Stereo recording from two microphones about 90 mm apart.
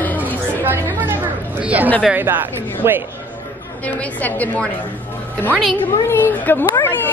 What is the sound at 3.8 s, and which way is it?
Speech, 15° left (ahead or behind).